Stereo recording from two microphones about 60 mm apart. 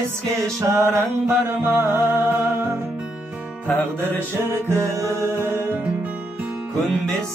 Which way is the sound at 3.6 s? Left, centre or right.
Left.